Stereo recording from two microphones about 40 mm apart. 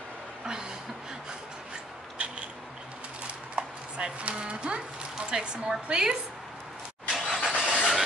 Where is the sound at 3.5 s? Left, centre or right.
Right.